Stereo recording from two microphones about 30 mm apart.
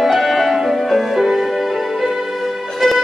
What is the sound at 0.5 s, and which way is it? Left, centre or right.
Music, centre.